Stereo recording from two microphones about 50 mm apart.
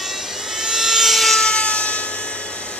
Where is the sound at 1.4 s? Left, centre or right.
Left.